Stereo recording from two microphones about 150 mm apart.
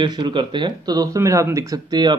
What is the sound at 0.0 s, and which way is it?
Speech, 30° right (ahead or behind).